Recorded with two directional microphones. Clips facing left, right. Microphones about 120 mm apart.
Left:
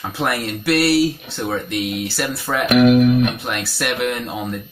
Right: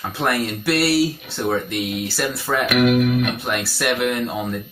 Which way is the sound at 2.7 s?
30° left (ahead or behind).